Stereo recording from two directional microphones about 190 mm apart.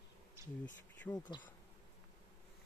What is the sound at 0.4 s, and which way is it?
Bee, 15° right (ahead or behind).